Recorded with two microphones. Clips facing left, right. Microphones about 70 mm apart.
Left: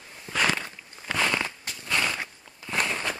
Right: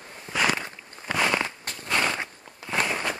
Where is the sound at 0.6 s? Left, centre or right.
Centre.